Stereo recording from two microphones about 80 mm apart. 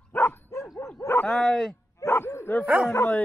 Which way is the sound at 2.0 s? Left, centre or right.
Left.